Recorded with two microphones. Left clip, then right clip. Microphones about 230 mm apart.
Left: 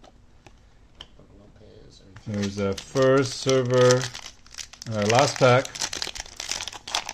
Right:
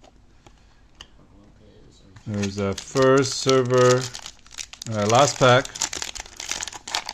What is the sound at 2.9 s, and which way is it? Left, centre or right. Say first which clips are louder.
Speech: right 2 dB; right.